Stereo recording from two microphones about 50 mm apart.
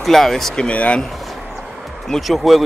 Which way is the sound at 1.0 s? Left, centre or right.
Centre.